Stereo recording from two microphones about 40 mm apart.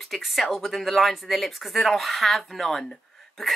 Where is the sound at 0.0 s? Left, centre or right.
Centre.